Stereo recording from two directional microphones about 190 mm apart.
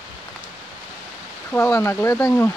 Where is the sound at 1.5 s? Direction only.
15° left (ahead or behind).